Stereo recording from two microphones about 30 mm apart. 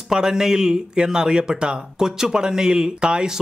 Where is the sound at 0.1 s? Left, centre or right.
Centre.